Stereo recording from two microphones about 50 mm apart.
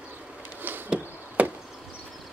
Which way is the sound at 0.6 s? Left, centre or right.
Right.